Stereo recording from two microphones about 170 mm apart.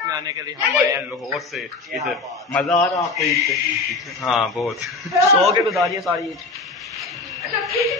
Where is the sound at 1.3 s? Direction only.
Centre (ahead or behind).